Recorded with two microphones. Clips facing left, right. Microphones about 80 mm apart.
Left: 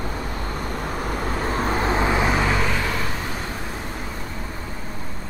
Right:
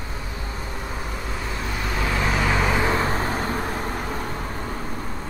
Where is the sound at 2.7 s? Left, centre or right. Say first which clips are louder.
Right 4 dB; right.